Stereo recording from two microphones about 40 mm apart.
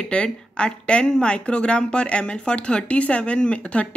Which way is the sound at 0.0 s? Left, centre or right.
Left.